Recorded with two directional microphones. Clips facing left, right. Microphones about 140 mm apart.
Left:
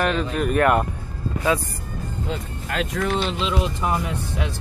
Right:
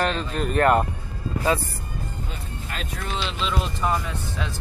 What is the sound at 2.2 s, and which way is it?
Speech, 90° left.